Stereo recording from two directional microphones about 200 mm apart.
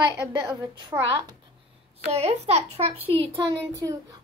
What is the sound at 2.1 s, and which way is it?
Speech, 30° right (ahead or behind).